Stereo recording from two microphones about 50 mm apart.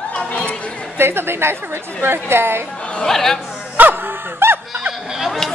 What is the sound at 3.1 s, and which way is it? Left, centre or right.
Speech, centre.